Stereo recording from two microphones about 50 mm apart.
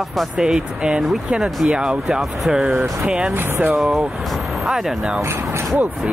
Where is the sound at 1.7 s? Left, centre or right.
Centre.